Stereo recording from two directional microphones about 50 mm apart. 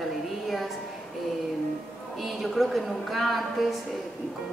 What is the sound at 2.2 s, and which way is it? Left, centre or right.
A woman's voice, centre.